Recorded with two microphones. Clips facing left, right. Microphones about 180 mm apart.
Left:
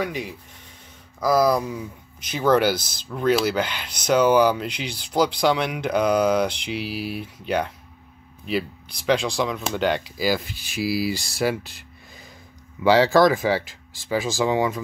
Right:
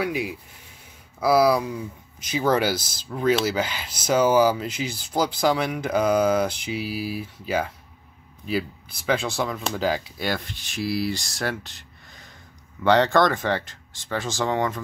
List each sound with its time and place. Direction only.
0.0 s speech: 5° right (ahead or behind)
4.9 s mantra: 65° left (ahead or behind)
5.3 s speech: 5° right (ahead or behind)
6.5 s mantra: 65° left (ahead or behind)
7.2 s speech: 5° right (ahead or behind)